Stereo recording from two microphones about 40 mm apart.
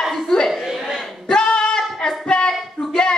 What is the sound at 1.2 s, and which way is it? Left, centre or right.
Singing, left.